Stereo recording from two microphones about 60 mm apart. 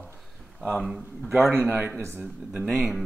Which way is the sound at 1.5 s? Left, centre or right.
Right.